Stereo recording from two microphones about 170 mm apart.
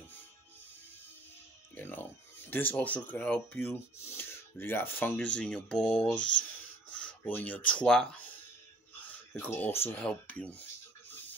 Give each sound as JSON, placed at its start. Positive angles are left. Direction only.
{"t": 1.8, "sound": "music", "side_deg": 10}
{"t": 2.5, "sound": "speech", "side_deg": 10}
{"t": 9.3, "sound": "speech", "side_deg": 10}